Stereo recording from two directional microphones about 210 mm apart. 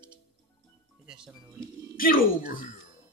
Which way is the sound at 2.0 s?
45° left (ahead or behind).